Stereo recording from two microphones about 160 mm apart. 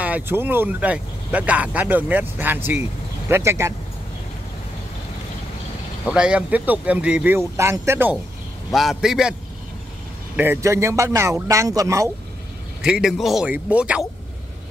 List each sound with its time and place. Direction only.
0.0 s speech: 10° right (ahead or behind)
6.0 s speech: 5° right (ahead or behind)
8.7 s speech: centre (ahead or behind)
10.3 s a man's voice: 15° right (ahead or behind)
12.8 s speech: 5° right (ahead or behind)